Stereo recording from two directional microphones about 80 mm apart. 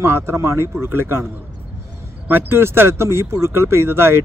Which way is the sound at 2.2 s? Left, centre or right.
Right.